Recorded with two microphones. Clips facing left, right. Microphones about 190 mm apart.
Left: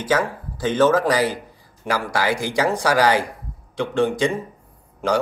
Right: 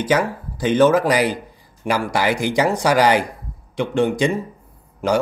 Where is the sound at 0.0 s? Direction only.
15° right (ahead or behind).